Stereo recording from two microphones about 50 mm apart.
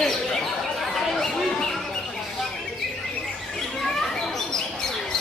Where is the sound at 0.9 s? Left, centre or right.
Centre.